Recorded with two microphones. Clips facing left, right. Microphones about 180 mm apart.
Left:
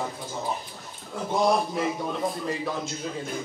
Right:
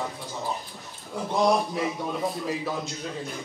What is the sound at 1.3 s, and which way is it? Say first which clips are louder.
Music: even; centre (ahead or behind).